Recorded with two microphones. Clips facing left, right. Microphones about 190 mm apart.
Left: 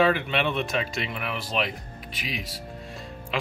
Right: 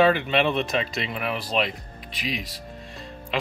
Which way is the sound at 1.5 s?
5° left (ahead or behind).